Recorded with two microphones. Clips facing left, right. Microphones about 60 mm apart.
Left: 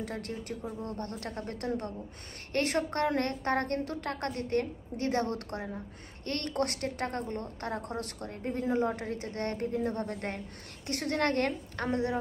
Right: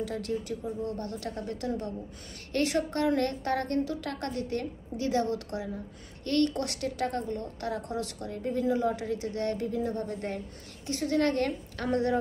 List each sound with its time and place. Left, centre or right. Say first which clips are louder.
0.0 s a woman's voice: right 5 dB; left
11.9 s a woman's voice: right 4 dB; centre